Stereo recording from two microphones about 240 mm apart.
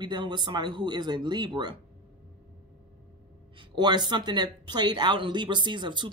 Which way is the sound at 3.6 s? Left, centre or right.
Centre.